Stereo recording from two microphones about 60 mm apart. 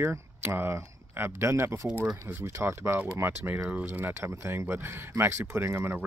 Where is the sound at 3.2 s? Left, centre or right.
Right.